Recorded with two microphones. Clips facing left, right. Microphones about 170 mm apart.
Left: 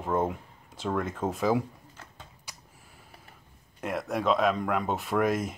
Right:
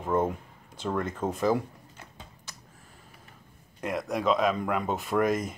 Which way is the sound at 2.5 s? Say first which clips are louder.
Even; 10° left (ahead or behind).